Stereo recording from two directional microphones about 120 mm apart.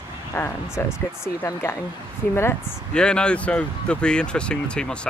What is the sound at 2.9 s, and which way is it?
Speech, 5° left (ahead or behind).